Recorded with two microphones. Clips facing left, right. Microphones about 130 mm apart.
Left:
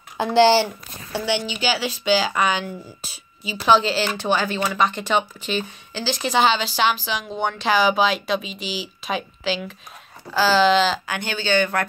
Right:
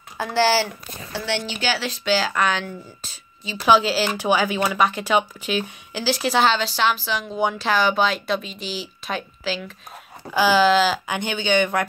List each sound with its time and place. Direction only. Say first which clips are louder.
0.2 s speech: left 4 dB; 20° left (ahead or behind)
1.1 s speech: left 3 dB; 10° left (ahead or behind)
3.6 s speech: even; 5° right (ahead or behind)
10.3 s speech: even; 15° right (ahead or behind)
11.1 s speech: right 1 dB; 20° right (ahead or behind)